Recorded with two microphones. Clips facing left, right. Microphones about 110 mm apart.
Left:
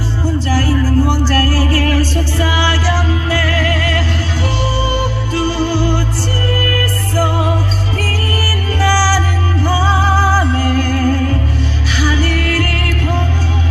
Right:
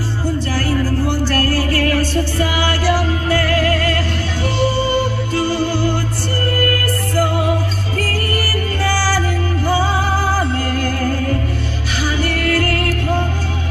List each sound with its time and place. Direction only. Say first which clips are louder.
1.3 s music: left 2 dB; 35° left (ahead or behind)
2.6 s music: even; 50° right (ahead or behind)
7.2 s music: left 1 dB; 30° left (ahead or behind)
10.7 s music: left 4 dB; 40° left (ahead or behind)
12.6 s music: right 1 dB; 35° right (ahead or behind)